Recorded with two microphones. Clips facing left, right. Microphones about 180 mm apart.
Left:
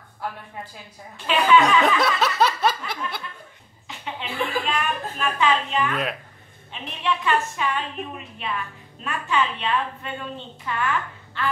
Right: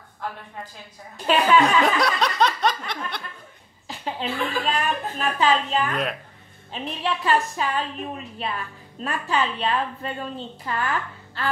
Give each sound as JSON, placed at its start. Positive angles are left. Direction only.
{"t": 1.1, "sound": "a woman's voice", "side_deg": -40}
{"t": 2.0, "sound": "snicker", "side_deg": 5}
{"t": 3.8, "sound": "a woman's voice", "side_deg": -35}